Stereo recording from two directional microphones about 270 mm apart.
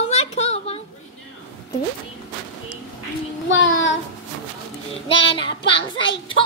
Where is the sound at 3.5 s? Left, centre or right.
Left.